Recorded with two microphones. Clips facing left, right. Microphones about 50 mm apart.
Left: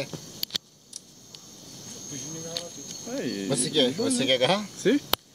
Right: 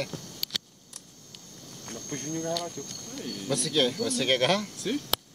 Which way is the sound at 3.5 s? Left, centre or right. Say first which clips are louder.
Left 1 dB; centre.